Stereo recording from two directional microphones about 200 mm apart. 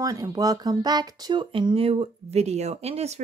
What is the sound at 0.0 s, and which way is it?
Speech, 20° right (ahead or behind).